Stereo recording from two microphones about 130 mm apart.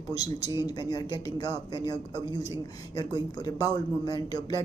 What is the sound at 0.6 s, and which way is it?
A man's voice, 30° left (ahead or behind).